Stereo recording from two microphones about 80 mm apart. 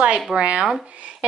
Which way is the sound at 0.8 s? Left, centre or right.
Centre.